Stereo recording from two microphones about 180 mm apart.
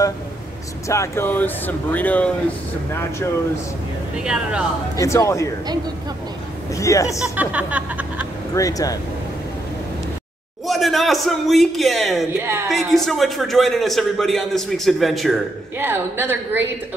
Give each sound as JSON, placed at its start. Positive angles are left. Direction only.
{"t": 0.8, "sound": "speech", "side_deg": 15}
{"t": 4.2, "sound": "a man's voice", "side_deg": -5}
{"t": 4.9, "sound": "speech", "side_deg": 15}
{"t": 6.7, "sound": "speech", "side_deg": 15}
{"t": 7.2, "sound": "speech", "side_deg": -10}
{"t": 8.5, "sound": "speech", "side_deg": 20}
{"t": 10.7, "sound": "a man's voice", "side_deg": 0}
{"t": 12.4, "sound": "speech", "side_deg": -15}
{"t": 12.6, "sound": "a man's voice", "side_deg": 0}
{"t": 15.8, "sound": "speech", "side_deg": -10}